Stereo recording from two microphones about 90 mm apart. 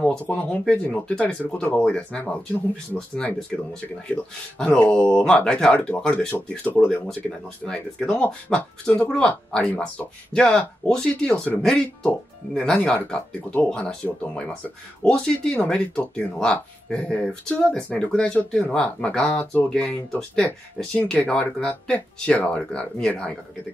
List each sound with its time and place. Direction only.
0.0 s speech: 15° left (ahead or behind)
21.1 s speech: 5° left (ahead or behind)